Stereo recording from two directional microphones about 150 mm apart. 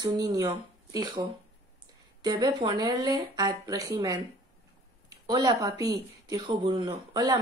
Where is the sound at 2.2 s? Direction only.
30° right (ahead or behind).